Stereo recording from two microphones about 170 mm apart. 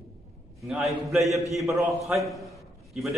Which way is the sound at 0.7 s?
Centre (ahead or behind).